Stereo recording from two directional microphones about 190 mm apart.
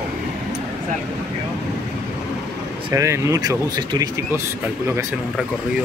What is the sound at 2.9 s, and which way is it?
Speech, 15° right (ahead or behind).